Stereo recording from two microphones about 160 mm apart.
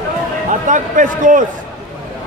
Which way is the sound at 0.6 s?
55° right (ahead or behind).